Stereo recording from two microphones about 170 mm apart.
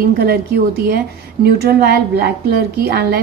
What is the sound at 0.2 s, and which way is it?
A woman's voice, 65° right (ahead or behind).